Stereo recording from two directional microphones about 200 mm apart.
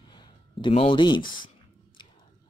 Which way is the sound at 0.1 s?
25° left (ahead or behind).